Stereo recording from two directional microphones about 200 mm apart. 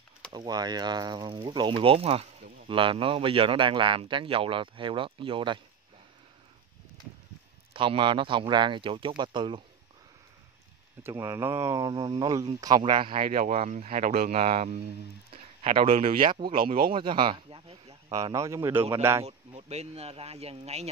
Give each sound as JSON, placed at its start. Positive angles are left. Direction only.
{"t": 0.3, "sound": "speech", "side_deg": -20}
{"t": 7.7, "sound": "speech", "side_deg": -25}
{"t": 11.0, "sound": "speech", "side_deg": -15}
{"t": 13.2, "sound": "speech", "side_deg": -35}
{"t": 18.1, "sound": "a man's voice", "side_deg": -15}
{"t": 19.2, "sound": "speech", "side_deg": -30}